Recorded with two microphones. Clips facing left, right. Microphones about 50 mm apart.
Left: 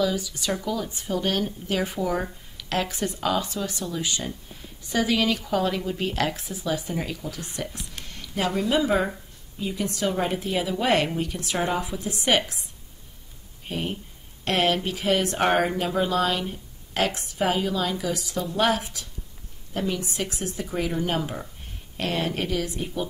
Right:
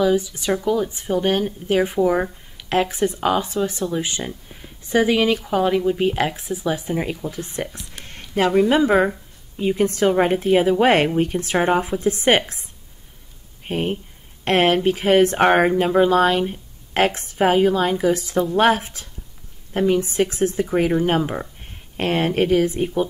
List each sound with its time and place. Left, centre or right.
0.0 s speech: right
8.0 s a sound: right
8.6 s a woman's voice: right
13.7 s a woman's voice: right